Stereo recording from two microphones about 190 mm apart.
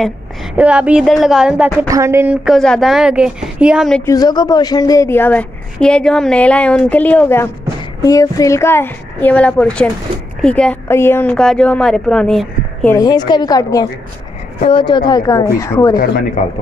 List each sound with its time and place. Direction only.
0.6 s a woman's voice: 5° right (ahead or behind)
4.0 s a woman's voice: 20° left (ahead or behind)
12.9 s a woman's voice: 20° left (ahead or behind)
16.4 s speech: 40° left (ahead or behind)